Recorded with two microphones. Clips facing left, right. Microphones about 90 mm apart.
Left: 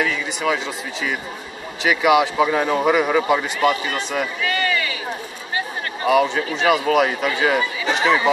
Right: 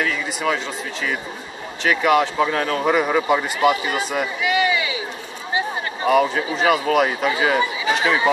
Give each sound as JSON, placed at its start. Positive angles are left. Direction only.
{"t": 0.0, "sound": "speech", "side_deg": 0}
{"t": 1.9, "sound": "speech", "side_deg": 10}
{"t": 6.0, "sound": "speech", "side_deg": 0}